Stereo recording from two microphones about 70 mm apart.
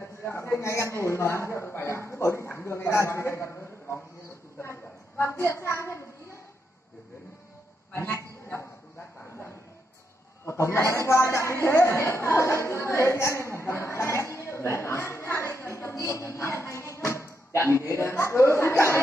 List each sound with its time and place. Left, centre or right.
0.2 s a man's voice: left
5.1 s a sound: left
7.9 s speech: left
8.2 s dog: left
10.4 s a man's voice: left
12.9 s a sound: left